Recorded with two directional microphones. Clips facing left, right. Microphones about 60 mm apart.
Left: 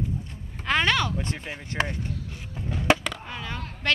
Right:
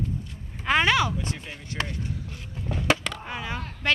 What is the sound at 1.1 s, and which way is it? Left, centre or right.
Speech, left.